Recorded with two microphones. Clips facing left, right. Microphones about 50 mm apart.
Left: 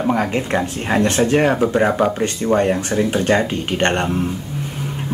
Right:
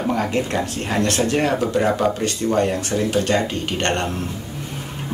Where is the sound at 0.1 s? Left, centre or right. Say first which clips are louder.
Left 2 dB; left.